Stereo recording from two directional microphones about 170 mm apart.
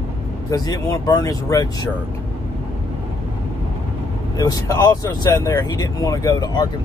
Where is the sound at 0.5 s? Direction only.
20° left (ahead or behind).